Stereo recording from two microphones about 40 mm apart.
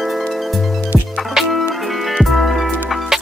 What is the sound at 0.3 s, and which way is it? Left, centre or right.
Music, centre.